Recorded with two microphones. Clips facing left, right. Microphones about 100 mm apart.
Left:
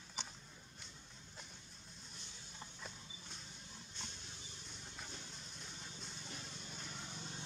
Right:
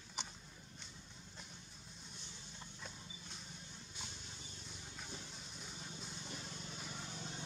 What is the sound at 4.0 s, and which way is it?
Vehicle, 5° right (ahead or behind).